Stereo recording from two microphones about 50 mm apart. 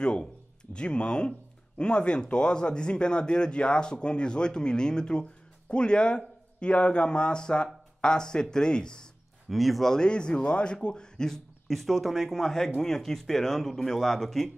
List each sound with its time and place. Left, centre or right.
0.0 s speech: centre
9.5 s speech: centre
9.9 s speech: centre